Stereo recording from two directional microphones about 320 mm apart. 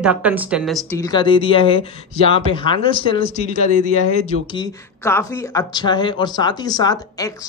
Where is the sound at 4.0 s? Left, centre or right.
Right.